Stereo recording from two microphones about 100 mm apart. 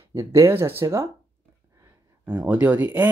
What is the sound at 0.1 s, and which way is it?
Speech, 25° right (ahead or behind).